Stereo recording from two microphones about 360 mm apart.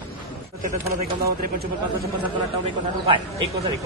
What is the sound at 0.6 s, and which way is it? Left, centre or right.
Speech, right.